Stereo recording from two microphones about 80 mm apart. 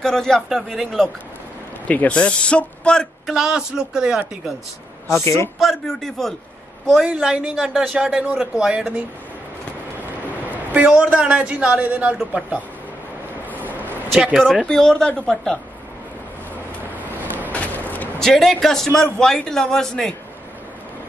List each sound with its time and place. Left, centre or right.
0.0 s a man's voice: centre
1.9 s speech: centre
3.3 s a man's voice: centre
5.0 s a woman's voice: left
5.6 s a man's voice: centre
7.1 s a man's voice: centre
10.5 s a man's voice: right
13.6 s a sound: right
14.3 s a man's voice: centre
17.5 s a sound: centre
18.2 s a man's voice: centre